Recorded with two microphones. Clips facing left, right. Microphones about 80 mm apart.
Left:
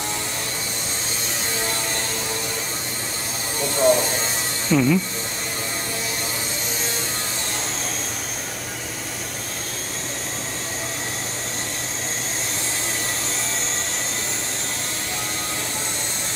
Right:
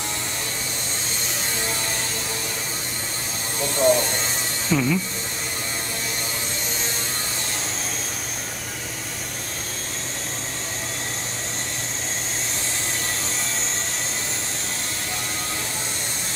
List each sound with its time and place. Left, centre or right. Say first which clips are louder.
3.6 s speech: left 1 dB; centre